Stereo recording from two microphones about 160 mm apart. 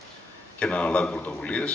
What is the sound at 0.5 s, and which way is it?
Speech, 5° left (ahead or behind).